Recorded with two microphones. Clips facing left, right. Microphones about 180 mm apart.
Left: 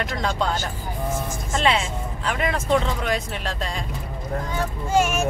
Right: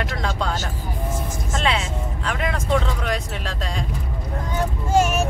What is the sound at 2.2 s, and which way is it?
Speech, 5° left (ahead or behind).